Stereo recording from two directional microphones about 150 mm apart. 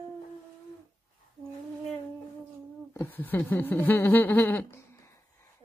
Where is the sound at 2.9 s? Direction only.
15° left (ahead or behind).